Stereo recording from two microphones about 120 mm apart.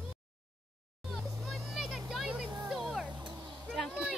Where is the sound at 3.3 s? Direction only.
40° right (ahead or behind).